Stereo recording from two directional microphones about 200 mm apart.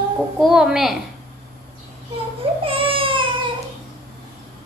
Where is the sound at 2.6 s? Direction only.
25° right (ahead or behind).